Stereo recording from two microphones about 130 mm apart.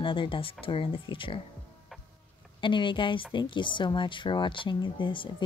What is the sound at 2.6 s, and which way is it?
Speech, 40° left (ahead or behind).